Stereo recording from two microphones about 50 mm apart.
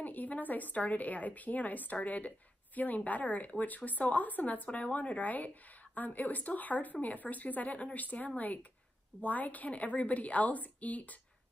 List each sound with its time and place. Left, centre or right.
0.0 s a woman's voice: left